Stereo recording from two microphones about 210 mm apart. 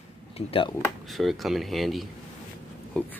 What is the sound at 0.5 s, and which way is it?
Speech, 25° left (ahead or behind).